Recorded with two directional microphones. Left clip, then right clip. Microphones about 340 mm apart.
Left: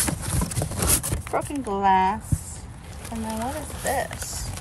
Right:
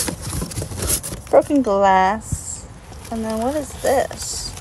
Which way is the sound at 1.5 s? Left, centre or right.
Right.